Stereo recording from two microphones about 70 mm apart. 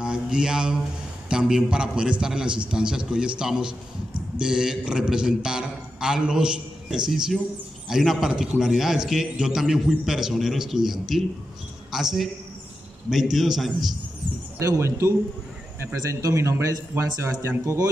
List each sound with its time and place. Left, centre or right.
0.0 s a sound: centre
1.3 s a man's voice: centre
14.8 s a man's voice: right